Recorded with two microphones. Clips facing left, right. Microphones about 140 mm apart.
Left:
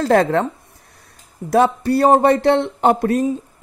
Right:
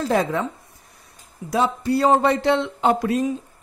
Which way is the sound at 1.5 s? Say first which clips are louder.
Left 5 dB; 65° left (ahead or behind).